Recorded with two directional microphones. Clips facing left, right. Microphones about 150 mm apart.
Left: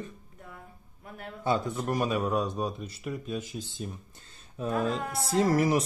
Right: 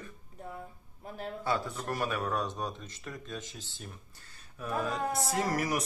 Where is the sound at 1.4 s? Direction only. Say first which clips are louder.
Left 5 dB; 20° left (ahead or behind).